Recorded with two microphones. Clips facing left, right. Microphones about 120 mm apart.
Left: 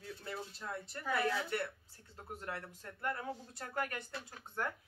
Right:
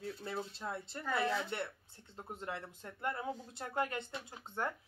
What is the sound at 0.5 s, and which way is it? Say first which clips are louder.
Speech: right 2 dB; 25° right (ahead or behind).